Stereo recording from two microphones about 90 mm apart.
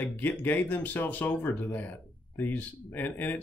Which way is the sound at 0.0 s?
20° left (ahead or behind).